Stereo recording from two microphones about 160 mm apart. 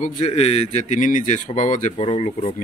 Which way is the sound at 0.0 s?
50° left (ahead or behind).